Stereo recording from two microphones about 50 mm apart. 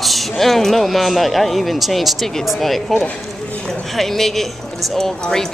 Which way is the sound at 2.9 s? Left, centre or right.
Left.